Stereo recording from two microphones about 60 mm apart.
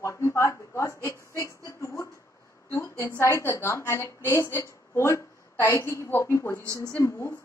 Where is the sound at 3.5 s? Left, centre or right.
Left.